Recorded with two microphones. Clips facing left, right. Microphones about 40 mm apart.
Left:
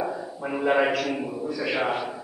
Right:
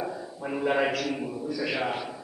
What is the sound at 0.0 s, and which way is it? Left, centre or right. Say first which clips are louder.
A man's voice: left 4 dB; centre.